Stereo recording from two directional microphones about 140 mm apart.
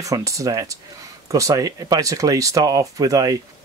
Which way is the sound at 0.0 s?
25° right (ahead or behind).